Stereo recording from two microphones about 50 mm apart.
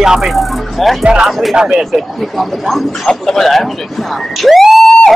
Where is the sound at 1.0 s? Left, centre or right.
Centre.